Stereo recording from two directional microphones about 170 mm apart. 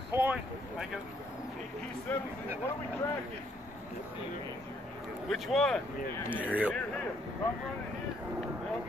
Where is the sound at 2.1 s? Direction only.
10° left (ahead or behind).